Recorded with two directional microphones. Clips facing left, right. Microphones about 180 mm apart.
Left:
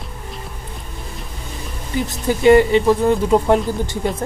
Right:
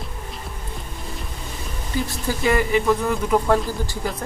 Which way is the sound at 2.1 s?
20° left (ahead or behind).